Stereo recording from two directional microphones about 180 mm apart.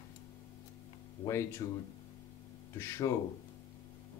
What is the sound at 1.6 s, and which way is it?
Speech, 20° left (ahead or behind).